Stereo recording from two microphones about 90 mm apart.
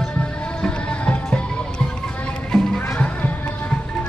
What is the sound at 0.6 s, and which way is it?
Music, 10° left (ahead or behind).